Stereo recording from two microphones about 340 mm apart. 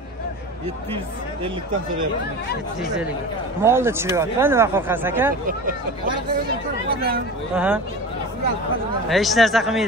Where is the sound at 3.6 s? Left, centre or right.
Centre.